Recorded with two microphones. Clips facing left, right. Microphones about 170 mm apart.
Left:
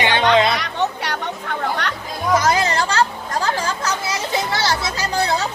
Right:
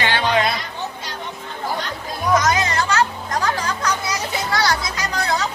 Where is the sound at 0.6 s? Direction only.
70° left (ahead or behind).